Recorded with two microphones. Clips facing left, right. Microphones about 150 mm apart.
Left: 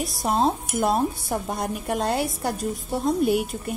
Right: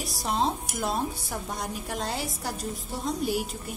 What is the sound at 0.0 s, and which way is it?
A woman's voice, 55° left (ahead or behind).